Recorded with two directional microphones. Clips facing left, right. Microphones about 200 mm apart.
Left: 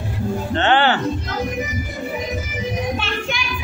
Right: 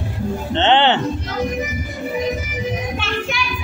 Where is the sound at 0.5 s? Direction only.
25° right (ahead or behind).